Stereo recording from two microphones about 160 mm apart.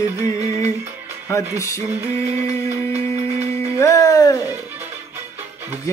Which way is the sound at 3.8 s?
20° left (ahead or behind).